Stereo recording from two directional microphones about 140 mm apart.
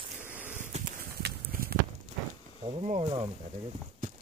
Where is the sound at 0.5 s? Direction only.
65° right (ahead or behind).